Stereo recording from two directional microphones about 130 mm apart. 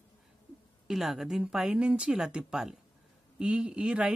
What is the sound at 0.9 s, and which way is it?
A woman's voice, centre (ahead or behind).